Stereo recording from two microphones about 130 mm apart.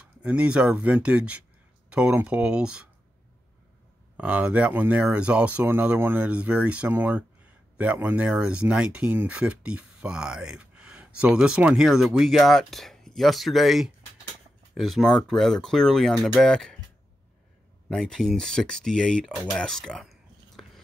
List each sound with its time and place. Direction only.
0.0 s speech: 10° right (ahead or behind)
4.2 s speech: 10° right (ahead or behind); by 16.7 s 5° left (ahead or behind)
17.8 s speech: 5° left (ahead or behind)
19.5 s a sound: 5° left (ahead or behind)